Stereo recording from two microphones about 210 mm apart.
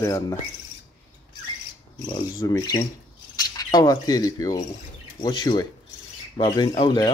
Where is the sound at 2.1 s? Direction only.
20° left (ahead or behind).